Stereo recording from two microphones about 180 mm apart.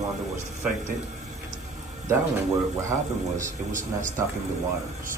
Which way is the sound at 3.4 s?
45° right (ahead or behind).